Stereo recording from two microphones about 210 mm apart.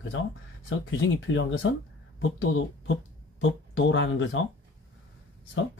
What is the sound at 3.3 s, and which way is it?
Speech, 65° left (ahead or behind).